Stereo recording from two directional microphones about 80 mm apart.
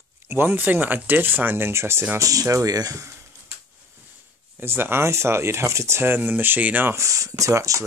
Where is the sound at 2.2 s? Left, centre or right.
Right.